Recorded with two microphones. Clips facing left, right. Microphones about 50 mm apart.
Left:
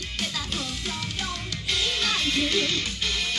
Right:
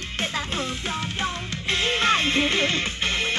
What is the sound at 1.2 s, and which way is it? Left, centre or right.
Music, right.